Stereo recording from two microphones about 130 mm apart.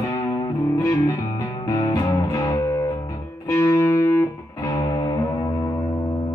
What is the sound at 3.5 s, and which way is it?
Music, 20° left (ahead or behind).